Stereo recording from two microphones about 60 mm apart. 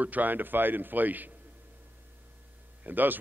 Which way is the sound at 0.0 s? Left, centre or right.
Right.